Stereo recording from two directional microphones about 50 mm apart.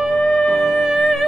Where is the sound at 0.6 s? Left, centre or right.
Centre.